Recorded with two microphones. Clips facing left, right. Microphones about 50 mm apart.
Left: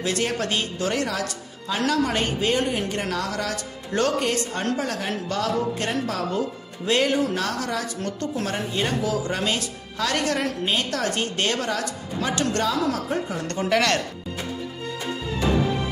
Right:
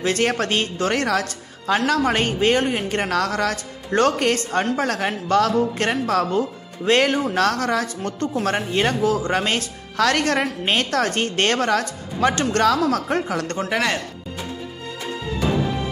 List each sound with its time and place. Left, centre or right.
0.0 s speech: right
13.7 s speech: centre